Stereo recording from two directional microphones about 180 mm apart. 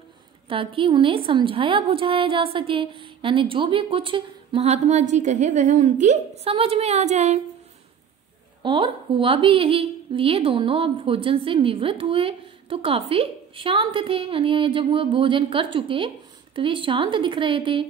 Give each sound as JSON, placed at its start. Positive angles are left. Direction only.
{"t": 0.5, "sound": "a woman's voice", "side_deg": -30}
{"t": 8.6, "sound": "a woman's voice", "side_deg": -30}